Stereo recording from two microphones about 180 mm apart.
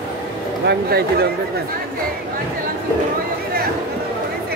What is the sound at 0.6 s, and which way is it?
Speech, 60° right (ahead or behind).